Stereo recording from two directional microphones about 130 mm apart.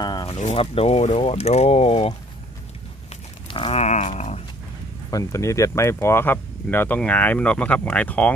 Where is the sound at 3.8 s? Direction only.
60° left (ahead or behind).